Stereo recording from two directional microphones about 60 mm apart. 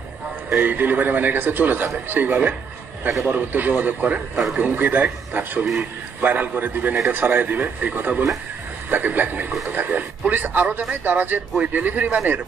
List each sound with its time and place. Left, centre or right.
0.6 s a man's voice: right
11.5 s a man's voice: right